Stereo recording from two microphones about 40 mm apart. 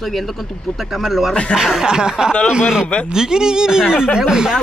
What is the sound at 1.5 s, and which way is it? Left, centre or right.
Speech, centre.